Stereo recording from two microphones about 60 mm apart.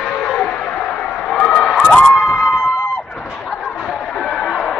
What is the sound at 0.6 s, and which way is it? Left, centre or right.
Music, left.